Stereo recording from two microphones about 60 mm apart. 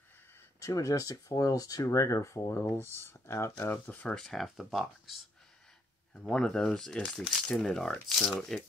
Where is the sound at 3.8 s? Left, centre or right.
Left.